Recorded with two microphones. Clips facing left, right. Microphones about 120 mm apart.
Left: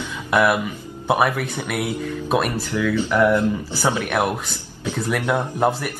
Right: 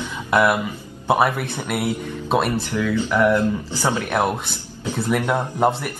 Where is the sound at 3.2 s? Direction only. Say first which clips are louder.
Even; 15° left (ahead or behind).